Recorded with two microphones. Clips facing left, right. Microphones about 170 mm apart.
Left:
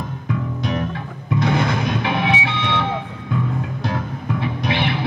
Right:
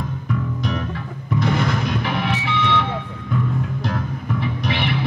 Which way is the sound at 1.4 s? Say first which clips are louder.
Left 1 dB; 20° left (ahead or behind).